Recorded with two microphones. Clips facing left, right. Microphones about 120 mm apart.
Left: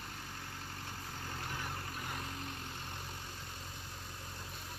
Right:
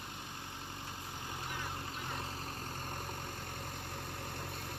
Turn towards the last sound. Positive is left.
turn(degrees=-60)  # may be behind; listen again after turning